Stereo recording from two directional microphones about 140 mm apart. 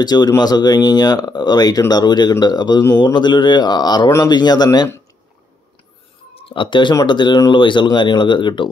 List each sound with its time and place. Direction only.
0.0 s speech: 30° left (ahead or behind)
6.3 s speech: 40° left (ahead or behind)